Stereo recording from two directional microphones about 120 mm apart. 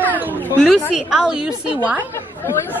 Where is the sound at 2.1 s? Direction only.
20° left (ahead or behind).